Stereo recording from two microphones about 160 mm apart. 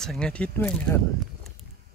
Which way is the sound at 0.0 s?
5° left (ahead or behind).